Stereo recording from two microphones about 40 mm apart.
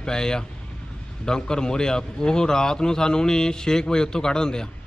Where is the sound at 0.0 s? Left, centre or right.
Centre.